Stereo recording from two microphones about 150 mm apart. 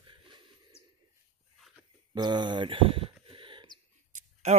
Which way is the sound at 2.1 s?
30° right (ahead or behind).